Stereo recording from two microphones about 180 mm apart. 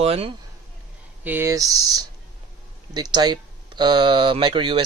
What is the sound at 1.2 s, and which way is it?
Speech, 10° right (ahead or behind).